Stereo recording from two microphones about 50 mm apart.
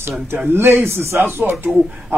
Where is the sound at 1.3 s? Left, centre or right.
Right.